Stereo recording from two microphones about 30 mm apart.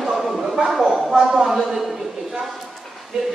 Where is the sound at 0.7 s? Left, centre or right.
Centre.